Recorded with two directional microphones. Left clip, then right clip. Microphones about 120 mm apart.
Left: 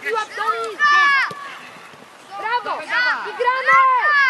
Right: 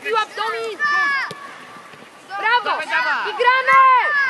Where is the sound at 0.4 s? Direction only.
10° right (ahead or behind).